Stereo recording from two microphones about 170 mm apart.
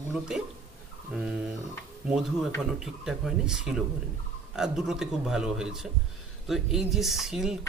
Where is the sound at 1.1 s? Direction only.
5° right (ahead or behind).